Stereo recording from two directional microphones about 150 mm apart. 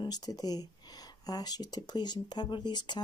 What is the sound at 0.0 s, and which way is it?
Speech, 25° left (ahead or behind).